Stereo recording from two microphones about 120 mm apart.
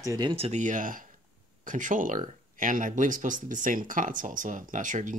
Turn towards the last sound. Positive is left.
turn(degrees=-90)